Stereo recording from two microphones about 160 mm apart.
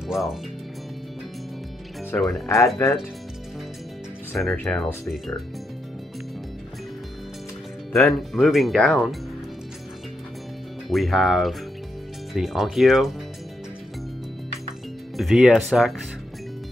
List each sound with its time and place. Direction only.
0.1 s speech: centre (ahead or behind)
2.4 s speech: 20° left (ahead or behind)
4.4 s speech: centre (ahead or behind)
7.9 s speech: centre (ahead or behind)
10.9 s speech: centre (ahead or behind)
15.1 s speech: centre (ahead or behind)